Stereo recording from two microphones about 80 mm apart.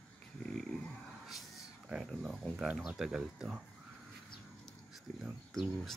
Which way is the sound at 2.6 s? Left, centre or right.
Centre.